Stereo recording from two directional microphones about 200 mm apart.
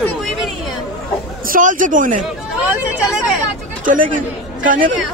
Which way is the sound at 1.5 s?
40° right (ahead or behind).